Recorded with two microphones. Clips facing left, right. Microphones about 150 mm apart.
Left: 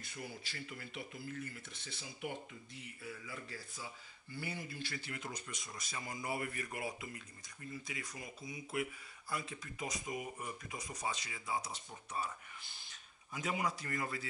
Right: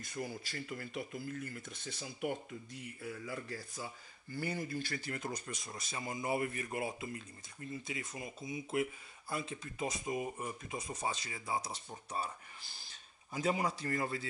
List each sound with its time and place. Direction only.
0.0 s speech: 45° right (ahead or behind)